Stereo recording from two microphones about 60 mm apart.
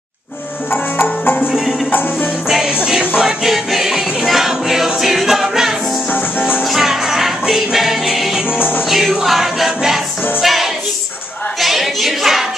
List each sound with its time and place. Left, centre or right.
1.2 s music: left
2.5 s music: centre
11.6 s a sound: centre